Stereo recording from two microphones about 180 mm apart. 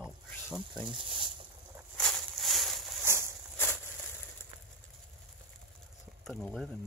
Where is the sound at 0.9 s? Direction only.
30° right (ahead or behind).